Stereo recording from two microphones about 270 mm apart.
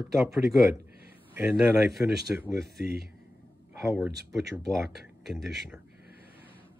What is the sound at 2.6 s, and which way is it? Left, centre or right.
Speech, right.